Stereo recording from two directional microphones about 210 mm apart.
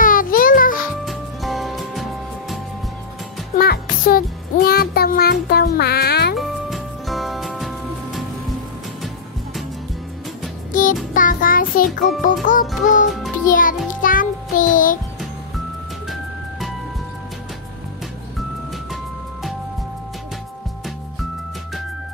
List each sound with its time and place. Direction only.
0.0 s music: 40° left (ahead or behind)
1.0 s music: centre (ahead or behind)
3.5 s music: 45° left (ahead or behind)
6.3 s music: centre (ahead or behind)
10.7 s music: 40° left (ahead or behind)
16.1 s music: centre (ahead or behind)